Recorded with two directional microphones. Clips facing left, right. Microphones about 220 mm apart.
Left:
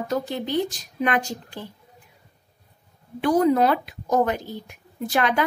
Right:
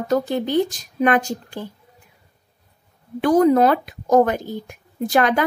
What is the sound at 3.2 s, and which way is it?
Speech, 45° right (ahead or behind).